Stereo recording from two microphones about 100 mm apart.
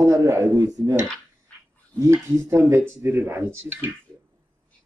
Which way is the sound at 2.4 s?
25° right (ahead or behind).